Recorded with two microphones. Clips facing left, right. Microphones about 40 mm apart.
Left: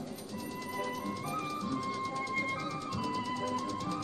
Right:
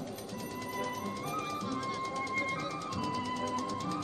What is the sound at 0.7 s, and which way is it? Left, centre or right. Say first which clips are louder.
Music: left 1 dB; centre.